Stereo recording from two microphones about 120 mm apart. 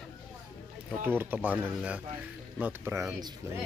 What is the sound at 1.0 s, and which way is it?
Speech, 15° right (ahead or behind).